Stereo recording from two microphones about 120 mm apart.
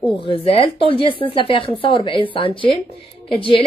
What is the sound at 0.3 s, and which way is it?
Speech, 50° left (ahead or behind).